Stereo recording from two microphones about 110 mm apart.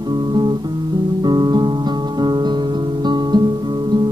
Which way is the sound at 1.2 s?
40° right (ahead or behind).